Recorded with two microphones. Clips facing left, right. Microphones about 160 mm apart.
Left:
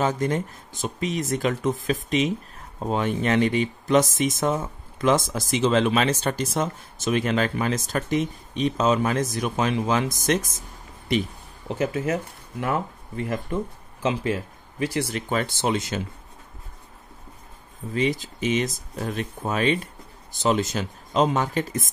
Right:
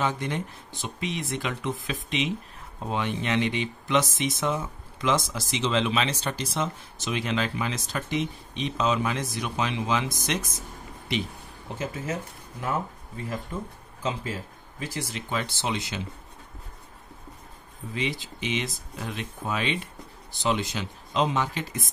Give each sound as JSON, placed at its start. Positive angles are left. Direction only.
{"t": 0.0, "sound": "speech", "side_deg": 45}
{"t": 11.8, "sound": "speech", "side_deg": 70}
{"t": 15.2, "sound": "speech", "side_deg": 50}
{"t": 17.9, "sound": "speech", "side_deg": 45}